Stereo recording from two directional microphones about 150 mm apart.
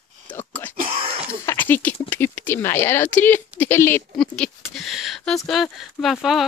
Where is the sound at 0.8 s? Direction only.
40° right (ahead or behind).